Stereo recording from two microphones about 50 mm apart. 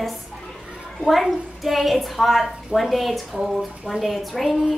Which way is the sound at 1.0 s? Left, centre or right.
Centre.